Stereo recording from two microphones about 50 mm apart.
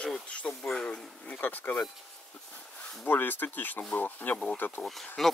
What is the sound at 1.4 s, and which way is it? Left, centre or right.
Speech, left.